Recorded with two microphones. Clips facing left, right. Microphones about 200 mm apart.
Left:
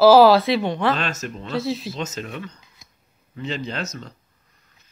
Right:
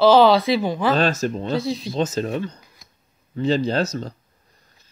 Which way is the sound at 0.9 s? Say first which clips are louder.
Right 8 dB; 35° right (ahead or behind).